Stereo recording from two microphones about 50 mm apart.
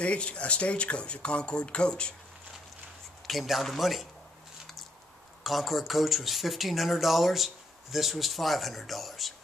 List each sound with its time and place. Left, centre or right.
0.0 s speech: left
3.3 s speech: centre
5.4 s speech: centre